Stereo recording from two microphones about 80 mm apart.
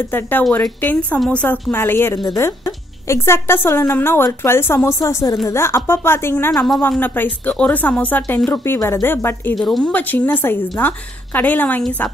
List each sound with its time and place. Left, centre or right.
0.1 s a woman's voice: centre
2.1 s speech: left
2.4 s a woman's voice: left
6.5 s a woman's voice: centre
7.0 s a woman's voice: left
9.6 s speech: centre
9.8 s a woman's voice: left